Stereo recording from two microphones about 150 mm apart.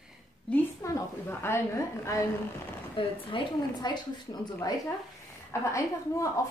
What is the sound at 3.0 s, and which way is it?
A woman's voice, 35° left (ahead or behind).